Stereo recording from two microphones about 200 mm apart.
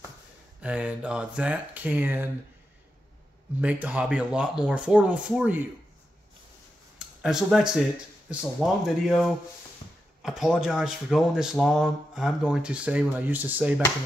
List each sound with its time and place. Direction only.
0.6 s speech: 5° right (ahead or behind)
3.6 s speech: 5° right (ahead or behind)
7.2 s speech: 5° right (ahead or behind)